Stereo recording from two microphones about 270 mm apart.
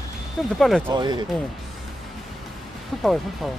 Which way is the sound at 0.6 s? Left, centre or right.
Centre.